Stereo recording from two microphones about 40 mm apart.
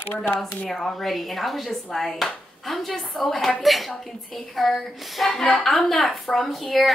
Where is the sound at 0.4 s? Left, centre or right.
Centre.